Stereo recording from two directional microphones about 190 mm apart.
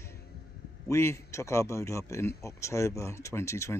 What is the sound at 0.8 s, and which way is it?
Speech, 15° left (ahead or behind).